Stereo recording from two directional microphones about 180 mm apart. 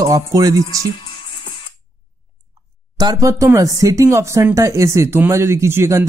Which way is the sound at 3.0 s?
20° right (ahead or behind).